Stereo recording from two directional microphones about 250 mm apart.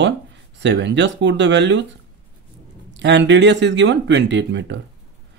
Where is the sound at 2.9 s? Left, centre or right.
Right.